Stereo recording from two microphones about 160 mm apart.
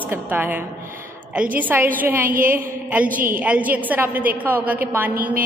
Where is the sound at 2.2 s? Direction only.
60° right (ahead or behind).